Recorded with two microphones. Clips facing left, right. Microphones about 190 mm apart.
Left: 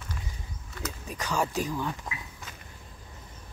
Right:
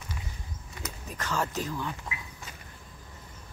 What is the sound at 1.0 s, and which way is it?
Speech, 15° left (ahead or behind).